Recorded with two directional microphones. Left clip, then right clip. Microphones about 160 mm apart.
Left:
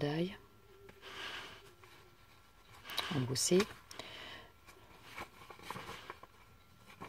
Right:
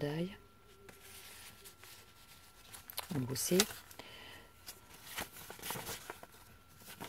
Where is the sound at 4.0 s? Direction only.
15° right (ahead or behind).